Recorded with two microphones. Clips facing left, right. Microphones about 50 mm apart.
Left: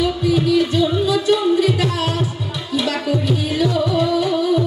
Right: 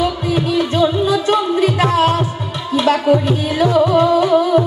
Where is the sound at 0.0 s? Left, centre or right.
Right.